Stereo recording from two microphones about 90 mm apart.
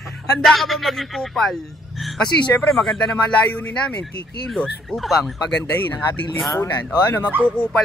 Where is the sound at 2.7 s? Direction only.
5° left (ahead or behind).